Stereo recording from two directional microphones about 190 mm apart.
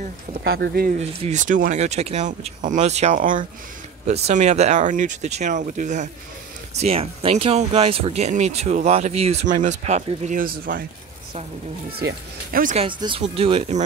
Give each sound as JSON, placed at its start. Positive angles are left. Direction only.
{"t": 0.4, "sound": "speech", "side_deg": -60}
{"t": 0.9, "sound": "speech", "side_deg": -40}
{"t": 11.9, "sound": "speech", "side_deg": -55}
{"t": 12.7, "sound": "speech", "side_deg": -25}